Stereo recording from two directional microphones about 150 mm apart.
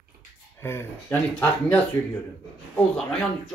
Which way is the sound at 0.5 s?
15° left (ahead or behind).